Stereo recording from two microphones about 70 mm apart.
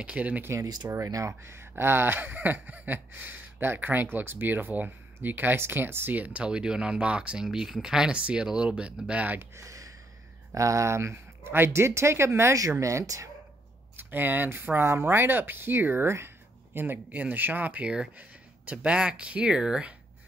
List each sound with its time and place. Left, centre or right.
0.0 s gasp: centre
1.0 s speech: right
1.4 s gasp: right
9.6 s a sound: right
10.5 s speech: right
13.9 s speech: right
16.7 s gasp: right
18.7 s speech: centre